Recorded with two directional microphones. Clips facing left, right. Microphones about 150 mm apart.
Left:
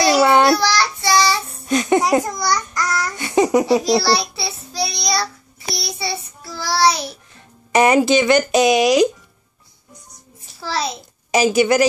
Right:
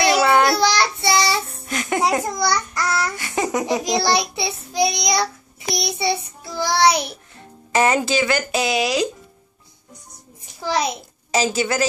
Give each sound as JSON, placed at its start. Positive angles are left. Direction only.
{"t": 0.2, "sound": "child singing", "side_deg": 20}
{"t": 0.6, "sound": "child singing", "side_deg": -25}
{"t": 1.7, "sound": "speech", "side_deg": 20}
{"t": 2.3, "sound": "child singing", "side_deg": -25}
{"t": 3.2, "sound": "laughter", "side_deg": 20}
{"t": 3.8, "sound": "child singing", "side_deg": -20}
{"t": 7.7, "sound": "speech", "side_deg": 15}
{"t": 10.6, "sound": "a child's voice", "side_deg": -15}
{"t": 11.5, "sound": "speech", "side_deg": 15}